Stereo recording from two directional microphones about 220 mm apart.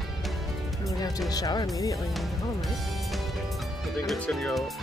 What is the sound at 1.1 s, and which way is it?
Speech, 15° left (ahead or behind).